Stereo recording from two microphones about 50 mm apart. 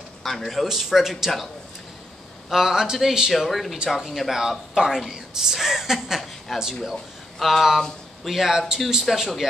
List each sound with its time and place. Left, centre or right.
0.2 s a man's voice: centre
2.5 s a woman's voice: centre
3.7 s a woman's voice: centre